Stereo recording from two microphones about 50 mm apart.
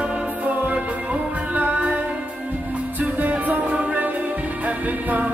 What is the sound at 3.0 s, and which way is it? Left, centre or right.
Music, right.